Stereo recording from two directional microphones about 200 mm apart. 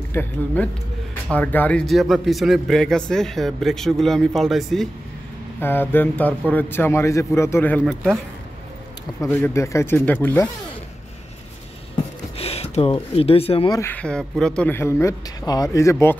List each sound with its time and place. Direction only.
0.1 s speech: 10° left (ahead or behind)
5.6 s speech: 10° left (ahead or behind)
9.2 s speech: 10° left (ahead or behind)
12.4 s speech: 30° left (ahead or behind)
13.7 s speech: 10° left (ahead or behind)